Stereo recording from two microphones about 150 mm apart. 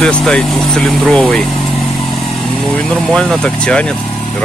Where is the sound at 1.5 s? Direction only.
40° left (ahead or behind).